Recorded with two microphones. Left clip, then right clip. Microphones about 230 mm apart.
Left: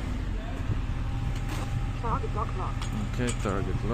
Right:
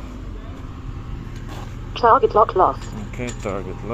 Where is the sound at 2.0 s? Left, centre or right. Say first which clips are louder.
Right 19 dB; right.